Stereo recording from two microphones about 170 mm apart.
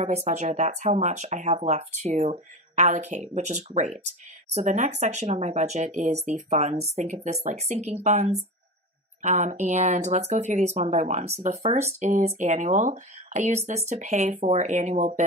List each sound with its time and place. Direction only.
0.0 s speech: 40° right (ahead or behind)